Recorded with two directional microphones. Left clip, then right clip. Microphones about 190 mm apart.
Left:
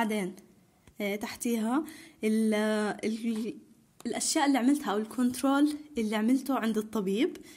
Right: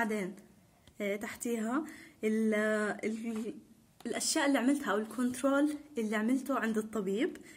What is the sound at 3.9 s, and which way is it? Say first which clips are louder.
A woman's voice: left 4 dB; 30° left (ahead or behind).